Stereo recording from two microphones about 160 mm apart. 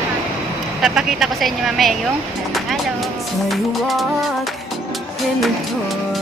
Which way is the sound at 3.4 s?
Centre (ahead or behind).